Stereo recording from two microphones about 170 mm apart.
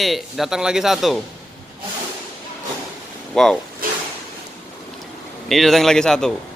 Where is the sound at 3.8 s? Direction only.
60° right (ahead or behind).